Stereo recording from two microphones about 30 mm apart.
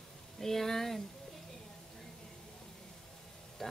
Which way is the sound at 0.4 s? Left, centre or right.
Centre.